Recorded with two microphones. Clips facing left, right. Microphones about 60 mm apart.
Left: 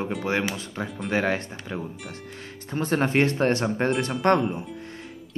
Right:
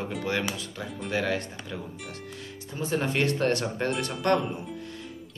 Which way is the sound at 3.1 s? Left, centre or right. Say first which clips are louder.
Left 2 dB; left.